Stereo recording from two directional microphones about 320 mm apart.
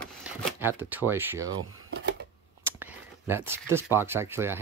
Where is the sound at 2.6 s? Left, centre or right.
Centre.